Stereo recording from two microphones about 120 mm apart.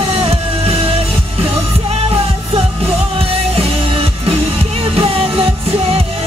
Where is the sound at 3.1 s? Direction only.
55° right (ahead or behind).